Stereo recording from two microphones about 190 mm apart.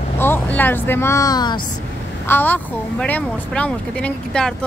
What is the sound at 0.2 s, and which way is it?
Speech, 10° left (ahead or behind).